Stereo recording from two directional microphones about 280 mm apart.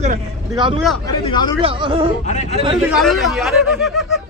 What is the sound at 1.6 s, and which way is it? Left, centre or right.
Speech, centre.